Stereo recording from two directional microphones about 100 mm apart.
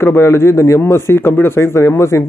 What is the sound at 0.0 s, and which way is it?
Speech, 25° left (ahead or behind).